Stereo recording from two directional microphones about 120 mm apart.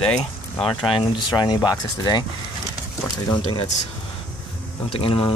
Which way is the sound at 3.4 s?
50° left (ahead or behind).